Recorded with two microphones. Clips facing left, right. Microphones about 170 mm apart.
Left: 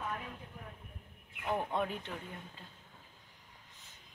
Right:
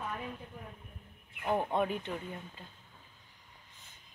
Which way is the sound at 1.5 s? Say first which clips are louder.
Right 4 dB; 25° right (ahead or behind).